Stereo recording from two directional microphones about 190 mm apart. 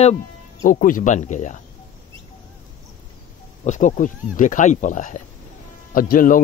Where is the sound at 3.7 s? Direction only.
40° left (ahead or behind).